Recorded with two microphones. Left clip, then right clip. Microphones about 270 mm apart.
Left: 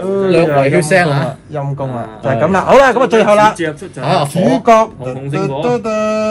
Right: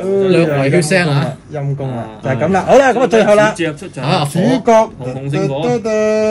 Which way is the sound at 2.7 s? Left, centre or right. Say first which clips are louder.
Left 1 dB; left.